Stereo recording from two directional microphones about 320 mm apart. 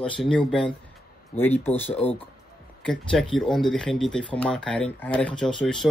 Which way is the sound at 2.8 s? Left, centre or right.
Centre.